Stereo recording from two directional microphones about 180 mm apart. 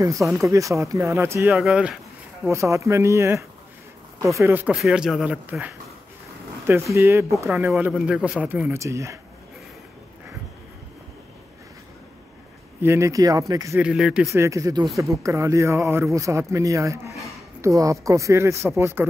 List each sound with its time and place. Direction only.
0.0 s speech: 20° right (ahead or behind)
1.5 s speech: 5° right (ahead or behind)
2.4 s speech: 15° right (ahead or behind)
6.7 s speech: 15° right (ahead or behind)
12.8 s speech: 15° right (ahead or behind)
13.7 s speech: 5° right (ahead or behind)
14.3 s speech: 15° right (ahead or behind)